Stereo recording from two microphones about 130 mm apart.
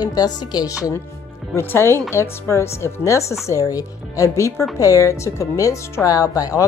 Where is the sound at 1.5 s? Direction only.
20° left (ahead or behind).